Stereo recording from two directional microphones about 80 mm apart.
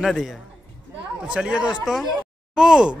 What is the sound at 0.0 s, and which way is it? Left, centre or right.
Speech, centre.